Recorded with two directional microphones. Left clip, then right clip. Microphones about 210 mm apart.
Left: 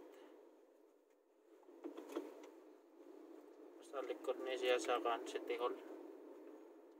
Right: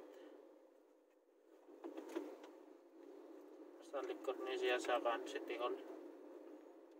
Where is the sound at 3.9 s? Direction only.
20° left (ahead or behind).